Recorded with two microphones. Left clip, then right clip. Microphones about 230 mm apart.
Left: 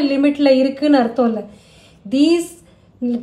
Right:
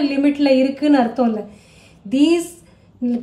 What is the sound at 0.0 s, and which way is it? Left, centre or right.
Speech, centre.